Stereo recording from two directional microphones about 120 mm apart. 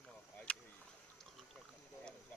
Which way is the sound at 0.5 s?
10° left (ahead or behind).